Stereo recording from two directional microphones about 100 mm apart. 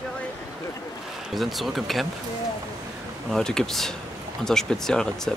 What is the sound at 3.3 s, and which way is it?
Speech, 5° left (ahead or behind).